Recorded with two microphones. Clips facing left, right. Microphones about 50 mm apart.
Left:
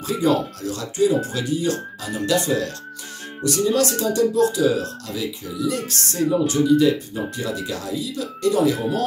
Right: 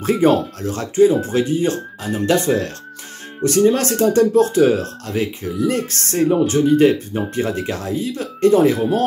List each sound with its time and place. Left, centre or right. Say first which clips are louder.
0.0 s speech: right 5 dB; right